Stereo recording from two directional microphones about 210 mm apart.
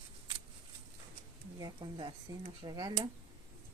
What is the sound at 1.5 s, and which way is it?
Speech, 20° right (ahead or behind).